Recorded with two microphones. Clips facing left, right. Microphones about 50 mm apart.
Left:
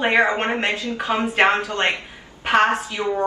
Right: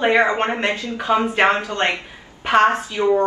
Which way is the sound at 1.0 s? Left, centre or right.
Left.